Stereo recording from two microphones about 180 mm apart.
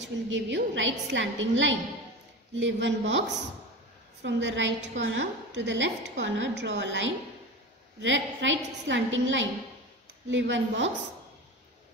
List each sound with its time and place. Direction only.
0.0 s a woman's voice: 90° right
4.2 s a woman's voice: 80° right